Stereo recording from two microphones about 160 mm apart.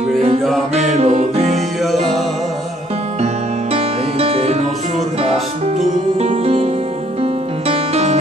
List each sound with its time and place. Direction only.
0.7 s music: 40° right (ahead or behind)
3.7 s music: 40° right (ahead or behind)